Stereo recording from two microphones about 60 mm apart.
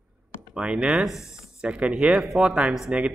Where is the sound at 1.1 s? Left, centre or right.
Left.